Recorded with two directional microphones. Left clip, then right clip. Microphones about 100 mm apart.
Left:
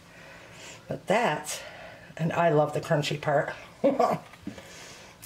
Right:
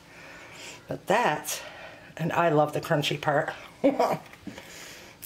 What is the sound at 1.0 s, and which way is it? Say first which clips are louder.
Speech: right 1 dB; 25° right (ahead or behind).